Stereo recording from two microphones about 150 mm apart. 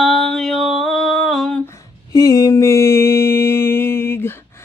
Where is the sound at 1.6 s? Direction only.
20° left (ahead or behind).